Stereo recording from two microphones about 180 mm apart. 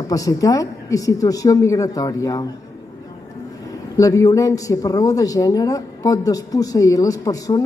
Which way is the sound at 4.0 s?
20° left (ahead or behind).